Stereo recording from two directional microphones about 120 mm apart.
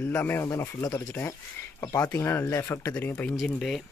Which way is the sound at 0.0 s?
15° left (ahead or behind).